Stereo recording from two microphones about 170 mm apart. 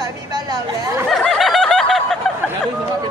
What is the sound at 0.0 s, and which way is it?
Chatter, 25° right (ahead or behind).